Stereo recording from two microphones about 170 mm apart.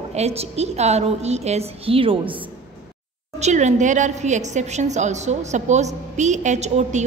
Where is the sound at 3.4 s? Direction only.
45° right (ahead or behind).